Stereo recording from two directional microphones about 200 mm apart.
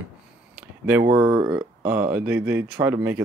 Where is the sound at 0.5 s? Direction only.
10° right (ahead or behind).